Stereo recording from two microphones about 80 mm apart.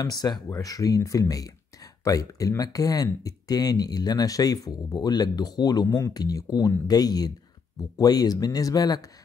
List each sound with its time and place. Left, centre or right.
0.0 s speech: left